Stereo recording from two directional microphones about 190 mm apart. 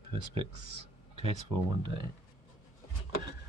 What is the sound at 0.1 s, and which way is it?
Speech, 30° right (ahead or behind).